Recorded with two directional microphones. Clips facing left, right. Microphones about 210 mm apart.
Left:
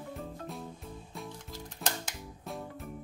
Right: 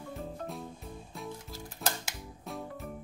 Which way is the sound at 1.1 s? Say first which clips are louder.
Right 2 dB; centre (ahead or behind).